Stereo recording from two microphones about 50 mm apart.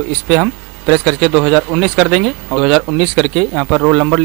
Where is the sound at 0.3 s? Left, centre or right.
Centre.